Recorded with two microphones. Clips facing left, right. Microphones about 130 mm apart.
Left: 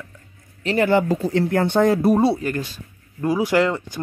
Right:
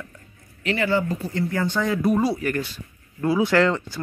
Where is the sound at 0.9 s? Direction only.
75° left (ahead or behind); by 1.9 s 60° left (ahead or behind).